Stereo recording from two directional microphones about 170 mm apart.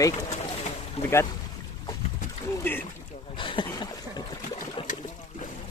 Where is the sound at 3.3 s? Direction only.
30° left (ahead or behind).